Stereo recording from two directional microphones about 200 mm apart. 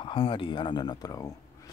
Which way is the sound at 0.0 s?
25° left (ahead or behind).